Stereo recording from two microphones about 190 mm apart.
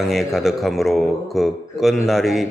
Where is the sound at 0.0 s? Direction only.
Centre (ahead or behind).